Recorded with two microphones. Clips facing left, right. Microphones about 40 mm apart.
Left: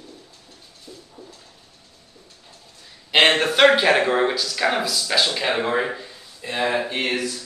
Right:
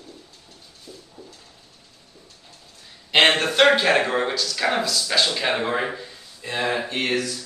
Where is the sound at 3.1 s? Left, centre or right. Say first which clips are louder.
Left 1 dB; centre.